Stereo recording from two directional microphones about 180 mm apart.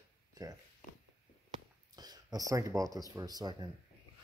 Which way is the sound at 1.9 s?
20° right (ahead or behind).